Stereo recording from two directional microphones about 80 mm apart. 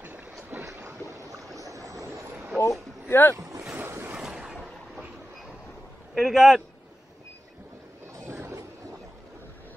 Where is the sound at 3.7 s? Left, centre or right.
Right.